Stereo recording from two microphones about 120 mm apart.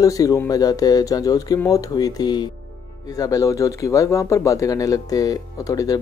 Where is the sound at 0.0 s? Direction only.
30° left (ahead or behind).